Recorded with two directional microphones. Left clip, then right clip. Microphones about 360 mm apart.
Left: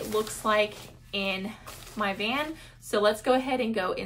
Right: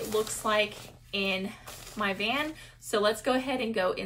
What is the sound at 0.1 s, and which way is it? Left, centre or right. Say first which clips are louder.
Speech: left 2 dB; centre.